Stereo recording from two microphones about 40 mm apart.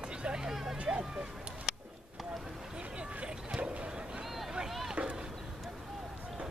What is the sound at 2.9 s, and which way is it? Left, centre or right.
Boat, right.